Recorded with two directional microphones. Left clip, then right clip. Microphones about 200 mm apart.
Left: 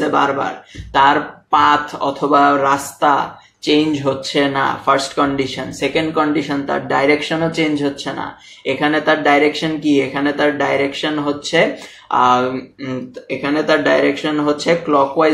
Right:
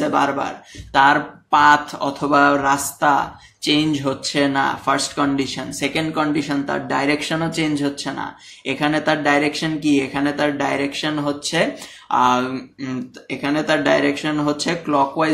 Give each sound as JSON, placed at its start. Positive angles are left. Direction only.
{"t": 0.0, "sound": "speech", "side_deg": -45}